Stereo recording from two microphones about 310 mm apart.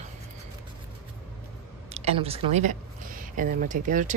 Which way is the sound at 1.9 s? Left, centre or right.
Centre.